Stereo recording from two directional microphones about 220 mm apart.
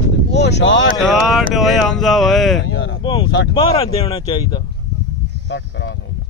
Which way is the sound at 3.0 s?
25° left (ahead or behind).